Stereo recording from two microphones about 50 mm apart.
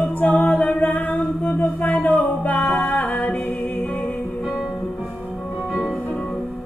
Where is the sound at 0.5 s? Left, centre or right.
Centre.